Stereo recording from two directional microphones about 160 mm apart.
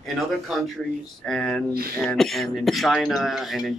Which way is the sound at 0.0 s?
Centre (ahead or behind).